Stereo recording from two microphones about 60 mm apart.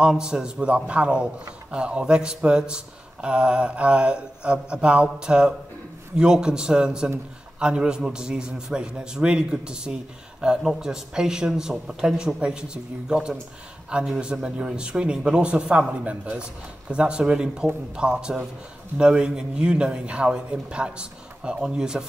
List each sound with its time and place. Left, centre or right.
0.1 s speech: centre